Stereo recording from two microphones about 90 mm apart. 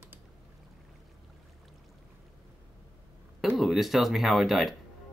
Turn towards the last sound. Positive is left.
turn(degrees=0)  # may be behind; listen again after turning